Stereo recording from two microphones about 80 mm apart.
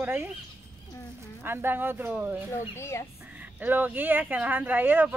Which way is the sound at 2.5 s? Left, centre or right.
Left.